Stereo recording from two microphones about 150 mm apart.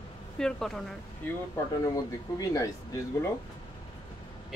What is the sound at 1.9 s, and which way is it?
Speech, 25° left (ahead or behind).